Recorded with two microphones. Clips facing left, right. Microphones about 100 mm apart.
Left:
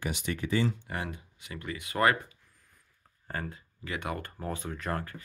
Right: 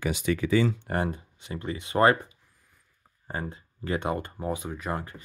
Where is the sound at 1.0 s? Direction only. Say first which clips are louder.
Right 8 dB; 35° right (ahead or behind).